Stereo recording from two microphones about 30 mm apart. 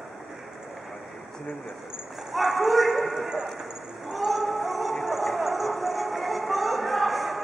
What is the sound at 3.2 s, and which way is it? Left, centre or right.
Speech, centre.